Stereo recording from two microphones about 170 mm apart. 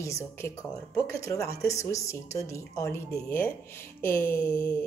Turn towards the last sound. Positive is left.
turn(degrees=15)  # may be behind; listen again after turning